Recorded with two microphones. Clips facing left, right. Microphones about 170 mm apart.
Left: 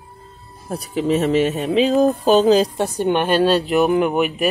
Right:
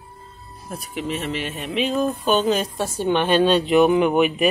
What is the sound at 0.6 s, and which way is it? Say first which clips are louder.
Speech: left 8 dB; 35° left (ahead or behind).